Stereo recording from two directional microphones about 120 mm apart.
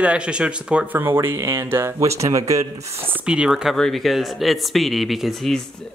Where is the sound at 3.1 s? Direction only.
10° right (ahead or behind).